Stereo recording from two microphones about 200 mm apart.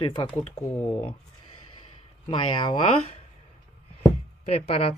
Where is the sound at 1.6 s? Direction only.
25° left (ahead or behind).